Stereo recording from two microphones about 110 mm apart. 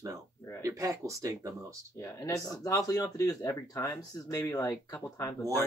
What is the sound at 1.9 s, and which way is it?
Speech, 25° left (ahead or behind).